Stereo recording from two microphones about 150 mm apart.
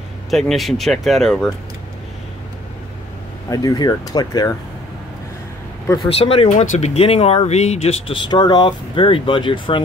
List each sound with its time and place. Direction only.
0.3 s speech: centre (ahead or behind)
3.4 s speech: 25° left (ahead or behind)
6.1 s speech: 40° left (ahead or behind)
6.5 s speech: 55° left (ahead or behind)
8.1 s speech: 30° left (ahead or behind)